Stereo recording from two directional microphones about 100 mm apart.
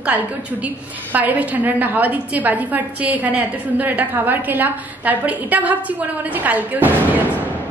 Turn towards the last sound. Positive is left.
turn(degrees=-15)  # may be behind; listen again after turning